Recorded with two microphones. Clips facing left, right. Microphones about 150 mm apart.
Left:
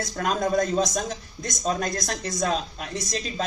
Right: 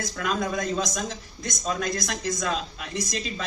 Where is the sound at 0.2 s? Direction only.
45° left (ahead or behind).